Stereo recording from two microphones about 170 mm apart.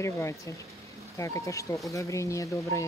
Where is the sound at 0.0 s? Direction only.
15° left (ahead or behind).